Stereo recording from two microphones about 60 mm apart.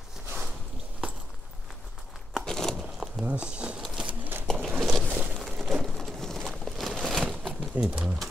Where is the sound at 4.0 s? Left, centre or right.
Right.